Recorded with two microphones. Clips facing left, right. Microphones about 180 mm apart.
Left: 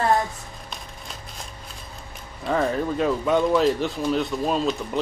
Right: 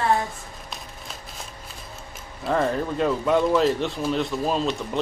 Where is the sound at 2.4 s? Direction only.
Centre (ahead or behind).